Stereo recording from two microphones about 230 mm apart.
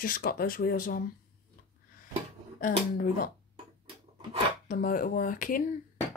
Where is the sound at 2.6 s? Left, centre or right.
Left.